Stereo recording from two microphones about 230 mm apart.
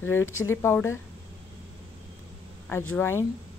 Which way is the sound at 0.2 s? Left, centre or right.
Left.